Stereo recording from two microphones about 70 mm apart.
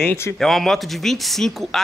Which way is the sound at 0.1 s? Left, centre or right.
Left.